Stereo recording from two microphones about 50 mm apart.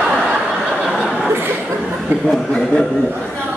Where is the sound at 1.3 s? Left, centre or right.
Right.